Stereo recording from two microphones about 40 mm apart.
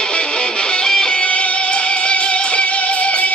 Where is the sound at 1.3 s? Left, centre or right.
Left.